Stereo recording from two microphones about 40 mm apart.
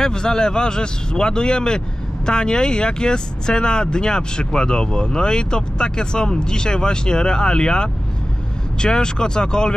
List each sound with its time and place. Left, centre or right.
0.0 s speech: centre